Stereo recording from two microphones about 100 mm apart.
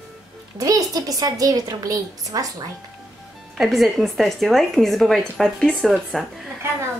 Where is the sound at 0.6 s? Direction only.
35° right (ahead or behind).